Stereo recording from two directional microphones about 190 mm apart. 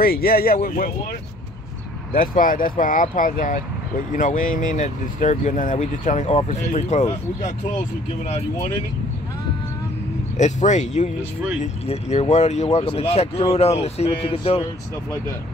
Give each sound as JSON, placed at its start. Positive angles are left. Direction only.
{"t": 0.0, "sound": "speech", "side_deg": 50}
{"t": 2.1, "sound": "speech", "side_deg": 45}
{"t": 10.3, "sound": "speech", "side_deg": 40}